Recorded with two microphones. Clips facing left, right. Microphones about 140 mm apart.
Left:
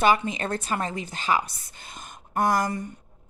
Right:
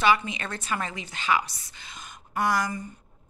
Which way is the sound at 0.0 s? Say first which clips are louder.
Left 2 dB; 45° left (ahead or behind).